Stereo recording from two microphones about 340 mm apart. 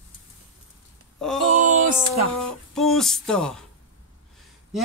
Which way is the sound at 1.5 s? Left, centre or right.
Right.